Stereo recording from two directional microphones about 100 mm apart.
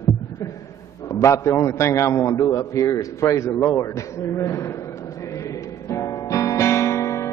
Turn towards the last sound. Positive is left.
turn(degrees=30)  # may be behind; listen again after turning